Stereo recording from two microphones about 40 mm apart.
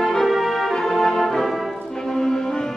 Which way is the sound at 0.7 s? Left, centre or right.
Centre.